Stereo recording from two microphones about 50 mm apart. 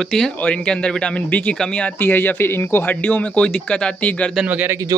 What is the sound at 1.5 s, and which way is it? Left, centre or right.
Speech, centre.